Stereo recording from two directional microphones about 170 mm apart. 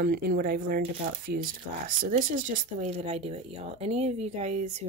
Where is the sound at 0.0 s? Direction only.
60° right (ahead or behind).